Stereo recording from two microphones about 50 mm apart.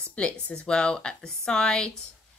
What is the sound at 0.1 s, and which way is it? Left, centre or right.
Speech, left.